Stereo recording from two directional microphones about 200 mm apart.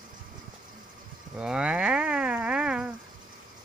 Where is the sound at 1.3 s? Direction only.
5° right (ahead or behind).